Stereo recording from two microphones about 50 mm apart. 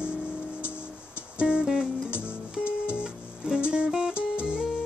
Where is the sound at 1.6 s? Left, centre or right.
Centre.